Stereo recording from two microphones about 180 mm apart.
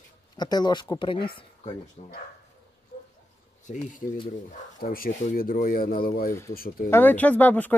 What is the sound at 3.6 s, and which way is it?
Speech, 45° left (ahead or behind).